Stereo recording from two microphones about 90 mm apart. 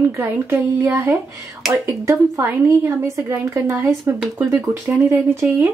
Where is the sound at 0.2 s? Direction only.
20° right (ahead or behind).